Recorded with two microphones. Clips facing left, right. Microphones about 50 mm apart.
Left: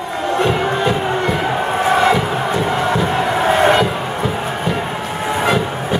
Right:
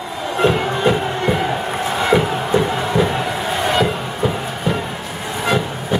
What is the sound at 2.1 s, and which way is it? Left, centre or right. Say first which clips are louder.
Music: right 1 dB; centre.